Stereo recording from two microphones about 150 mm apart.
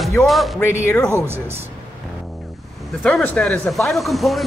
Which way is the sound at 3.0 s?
10° left (ahead or behind).